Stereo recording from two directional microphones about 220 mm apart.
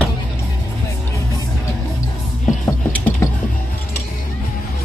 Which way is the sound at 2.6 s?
5° left (ahead or behind).